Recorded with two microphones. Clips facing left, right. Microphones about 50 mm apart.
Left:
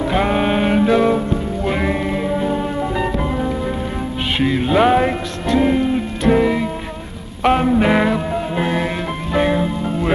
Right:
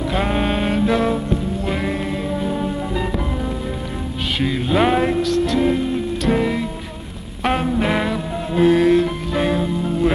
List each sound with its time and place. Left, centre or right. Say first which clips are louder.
0.0 s music: left 3 dB; centre
4.4 s music: left 3 dB; left
4.8 s music: left 2 dB; centre
5.3 s music: left 1 dB; left
6.3 s music: left 4 dB; centre